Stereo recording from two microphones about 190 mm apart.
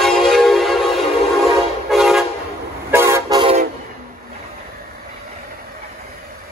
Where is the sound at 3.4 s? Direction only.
30° right (ahead or behind).